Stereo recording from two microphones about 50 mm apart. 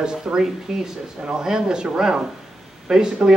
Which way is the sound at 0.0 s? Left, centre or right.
Centre.